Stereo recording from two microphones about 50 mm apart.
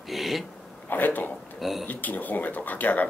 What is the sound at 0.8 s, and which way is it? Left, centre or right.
Speech, left.